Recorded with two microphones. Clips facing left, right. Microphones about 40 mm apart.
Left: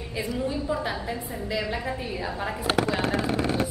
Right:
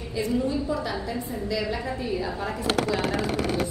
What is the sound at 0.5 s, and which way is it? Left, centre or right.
A woman's voice, centre.